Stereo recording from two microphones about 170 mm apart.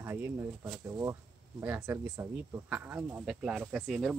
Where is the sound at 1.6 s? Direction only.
15° right (ahead or behind).